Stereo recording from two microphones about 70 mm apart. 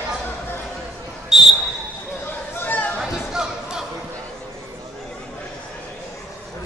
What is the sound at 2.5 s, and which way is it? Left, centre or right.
Chatter, left.